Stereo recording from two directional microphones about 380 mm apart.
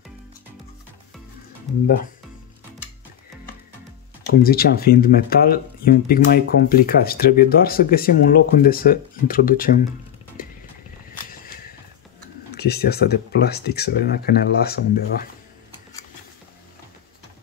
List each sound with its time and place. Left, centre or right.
4.3 s speech: left
11.4 s horse: left
12.4 s speech: left